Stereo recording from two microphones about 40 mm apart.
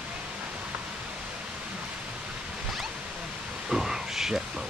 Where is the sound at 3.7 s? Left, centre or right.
Centre.